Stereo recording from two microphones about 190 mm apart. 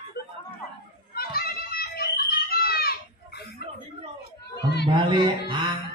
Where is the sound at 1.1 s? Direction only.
55° left (ahead or behind).